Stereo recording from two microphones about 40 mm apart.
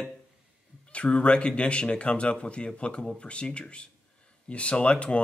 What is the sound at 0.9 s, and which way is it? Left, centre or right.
Speech, left.